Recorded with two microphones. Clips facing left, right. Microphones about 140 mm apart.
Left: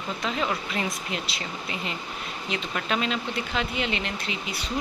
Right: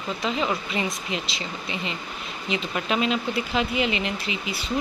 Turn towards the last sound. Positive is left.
turn(degrees=-5)  # may be behind; listen again after turning